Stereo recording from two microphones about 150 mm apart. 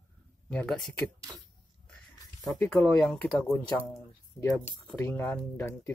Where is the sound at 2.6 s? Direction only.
10° left (ahead or behind).